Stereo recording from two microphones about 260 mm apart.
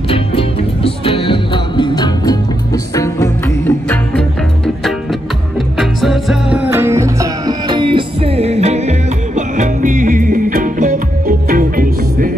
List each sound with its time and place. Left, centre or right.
0.1 s music: left
5.8 s music: centre; by 12.3 s right